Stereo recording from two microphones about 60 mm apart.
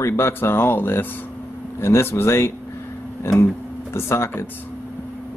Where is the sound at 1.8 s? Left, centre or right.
Left.